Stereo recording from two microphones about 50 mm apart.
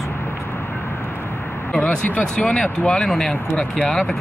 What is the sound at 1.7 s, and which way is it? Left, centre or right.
Speech, left.